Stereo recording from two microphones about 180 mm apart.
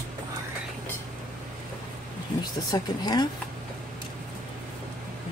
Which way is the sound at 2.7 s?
20° left (ahead or behind).